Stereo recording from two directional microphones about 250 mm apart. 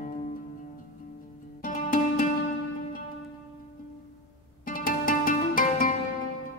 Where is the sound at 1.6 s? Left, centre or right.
Left.